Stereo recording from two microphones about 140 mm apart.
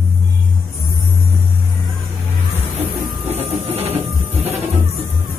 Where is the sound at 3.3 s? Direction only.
50° right (ahead or behind).